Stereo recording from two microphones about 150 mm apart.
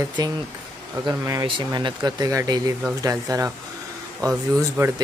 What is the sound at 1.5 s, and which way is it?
Speech, 30° right (ahead or behind).